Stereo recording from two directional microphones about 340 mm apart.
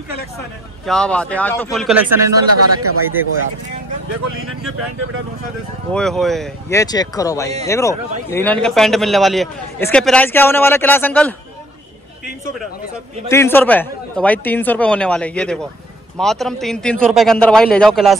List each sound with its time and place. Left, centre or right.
0.8 s a man's voice: centre
2.5 s a man's voice: right
5.9 s a man's voice: centre
13.3 s a man's voice: centre